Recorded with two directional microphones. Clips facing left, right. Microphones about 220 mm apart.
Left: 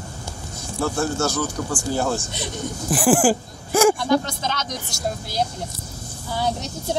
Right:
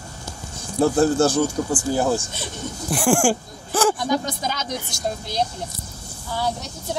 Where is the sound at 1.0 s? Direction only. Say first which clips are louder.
Right 6 dB; 30° right (ahead or behind).